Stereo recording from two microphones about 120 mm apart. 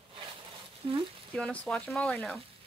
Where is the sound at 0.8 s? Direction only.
45° right (ahead or behind).